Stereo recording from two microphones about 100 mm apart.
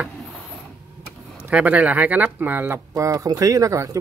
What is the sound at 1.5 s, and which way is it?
Speech, 15° right (ahead or behind).